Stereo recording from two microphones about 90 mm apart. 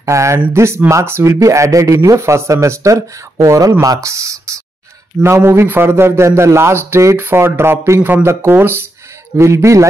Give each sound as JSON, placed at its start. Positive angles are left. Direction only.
{"t": 0.0, "sound": "a man's voice", "side_deg": -35}